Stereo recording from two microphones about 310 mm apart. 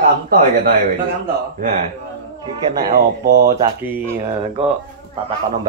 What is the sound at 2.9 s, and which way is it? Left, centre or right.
Speech, right.